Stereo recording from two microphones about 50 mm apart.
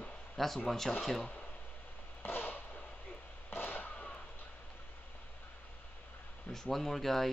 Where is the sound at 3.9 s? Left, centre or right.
Left.